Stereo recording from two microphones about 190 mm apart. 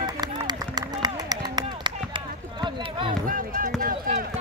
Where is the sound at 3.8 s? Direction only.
50° right (ahead or behind).